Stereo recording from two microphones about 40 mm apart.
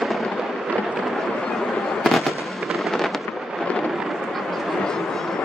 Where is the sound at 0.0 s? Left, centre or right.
Centre.